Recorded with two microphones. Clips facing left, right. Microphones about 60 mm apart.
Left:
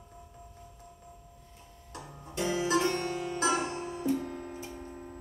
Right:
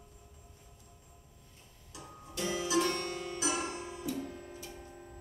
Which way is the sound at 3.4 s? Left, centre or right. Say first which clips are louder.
Left 6 dB; left.